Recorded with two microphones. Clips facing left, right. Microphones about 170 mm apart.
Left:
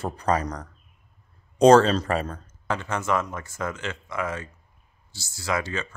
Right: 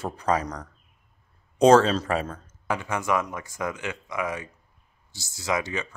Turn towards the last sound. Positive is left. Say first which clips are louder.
# even
turn(degrees=-15)  # may be behind; listen again after turning